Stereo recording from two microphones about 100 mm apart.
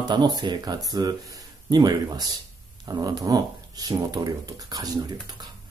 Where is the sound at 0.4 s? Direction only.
45° right (ahead or behind).